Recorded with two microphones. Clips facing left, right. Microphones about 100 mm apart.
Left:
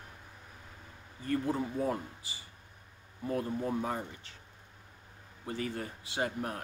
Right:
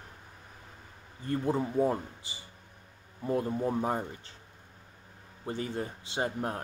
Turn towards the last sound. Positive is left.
turn(degrees=-30)  # may be behind; listen again after turning